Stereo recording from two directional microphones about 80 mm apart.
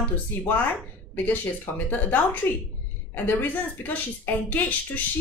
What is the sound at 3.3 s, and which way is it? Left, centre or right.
A woman's voice, left.